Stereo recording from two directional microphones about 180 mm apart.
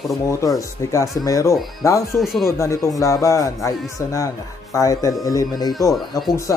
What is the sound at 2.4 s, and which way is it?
A man's voice, 15° left (ahead or behind).